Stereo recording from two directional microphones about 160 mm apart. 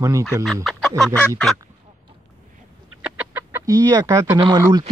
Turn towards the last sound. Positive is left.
turn(degrees=-25)  # may be behind; listen again after turning